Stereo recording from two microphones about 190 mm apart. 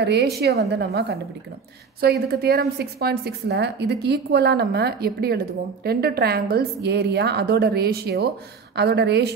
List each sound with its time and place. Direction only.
0.0 s a woman's voice: 60° right (ahead or behind)